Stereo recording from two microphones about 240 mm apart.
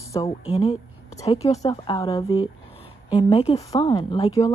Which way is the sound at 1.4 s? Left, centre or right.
Centre.